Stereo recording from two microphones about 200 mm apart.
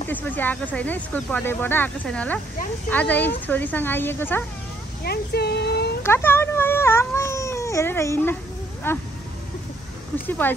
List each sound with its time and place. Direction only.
0.1 s speech: 10° left (ahead or behind)
5.0 s speech: 55° left (ahead or behind)
6.0 s speech: 10° left (ahead or behind)
10.2 s speech: 10° left (ahead or behind)